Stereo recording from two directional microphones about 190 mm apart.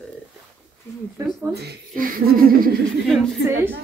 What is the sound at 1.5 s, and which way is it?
A woman's voice, 55° right (ahead or behind).